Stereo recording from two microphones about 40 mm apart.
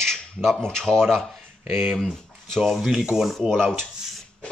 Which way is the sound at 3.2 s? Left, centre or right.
Centre.